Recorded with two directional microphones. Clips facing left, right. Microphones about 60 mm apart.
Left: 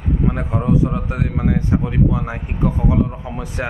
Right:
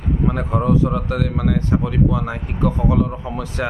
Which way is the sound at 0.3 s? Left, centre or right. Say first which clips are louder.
Right 1 dB; centre.